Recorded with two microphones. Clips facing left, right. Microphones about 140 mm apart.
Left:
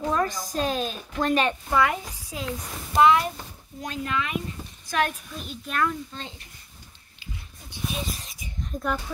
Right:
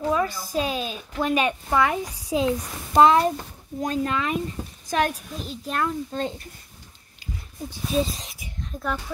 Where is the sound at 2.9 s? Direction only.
35° right (ahead or behind).